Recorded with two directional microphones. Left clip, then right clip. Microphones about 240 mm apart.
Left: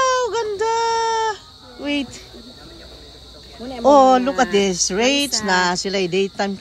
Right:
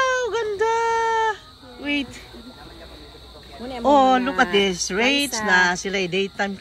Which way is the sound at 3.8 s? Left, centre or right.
Centre.